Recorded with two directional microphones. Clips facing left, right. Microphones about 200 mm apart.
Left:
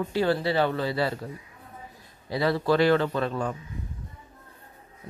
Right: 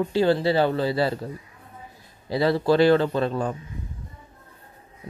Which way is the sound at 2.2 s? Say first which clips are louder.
Right 4 dB; 30° right (ahead or behind).